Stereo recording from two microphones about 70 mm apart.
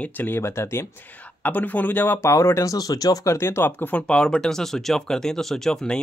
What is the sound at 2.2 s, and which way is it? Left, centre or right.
Speech, left.